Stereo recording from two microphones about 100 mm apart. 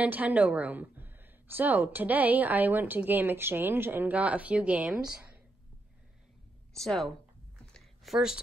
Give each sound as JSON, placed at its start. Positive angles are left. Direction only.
{"t": 0.0, "sound": "a woman's voice", "side_deg": -15}
{"t": 6.8, "sound": "speech", "side_deg": 5}
{"t": 7.7, "sound": "a sound", "side_deg": 0}